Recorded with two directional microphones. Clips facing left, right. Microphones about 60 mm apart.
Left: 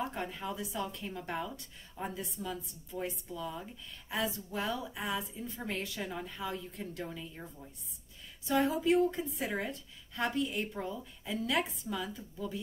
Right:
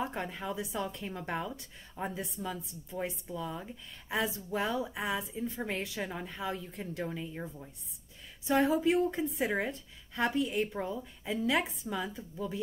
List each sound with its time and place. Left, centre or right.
0.0 s a woman's voice: right
8.5 s a woman's voice: right